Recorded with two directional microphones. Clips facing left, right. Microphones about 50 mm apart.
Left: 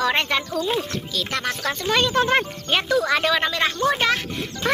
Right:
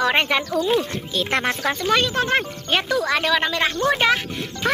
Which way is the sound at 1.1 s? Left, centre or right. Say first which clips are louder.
Right 5 dB; right.